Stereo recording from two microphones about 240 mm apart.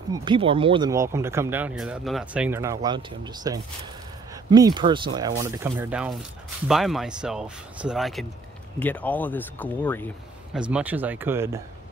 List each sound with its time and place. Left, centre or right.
0.1 s speech: centre
10.5 s speech: centre